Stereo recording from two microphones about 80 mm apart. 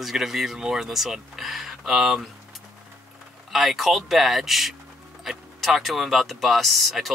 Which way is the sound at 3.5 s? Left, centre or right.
Centre.